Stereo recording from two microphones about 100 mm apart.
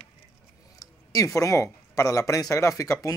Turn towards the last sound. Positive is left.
turn(degrees=30)  # may be behind; listen again after turning